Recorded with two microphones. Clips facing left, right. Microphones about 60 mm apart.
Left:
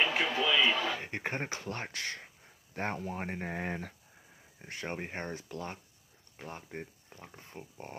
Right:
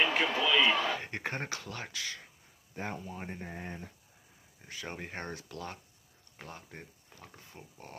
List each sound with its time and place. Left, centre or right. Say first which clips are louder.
0.0 s a sound: right 1 dB; centre
1.7 s speech: left 3 dB; left
3.0 s speech: left 5 dB; left
4.9 s speech: left 2 dB; centre